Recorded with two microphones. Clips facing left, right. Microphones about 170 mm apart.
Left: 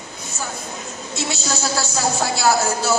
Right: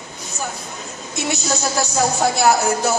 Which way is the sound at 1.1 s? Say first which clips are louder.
Right 3 dB; 15° right (ahead or behind).